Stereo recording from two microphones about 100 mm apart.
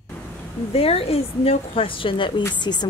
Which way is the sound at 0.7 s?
80° left.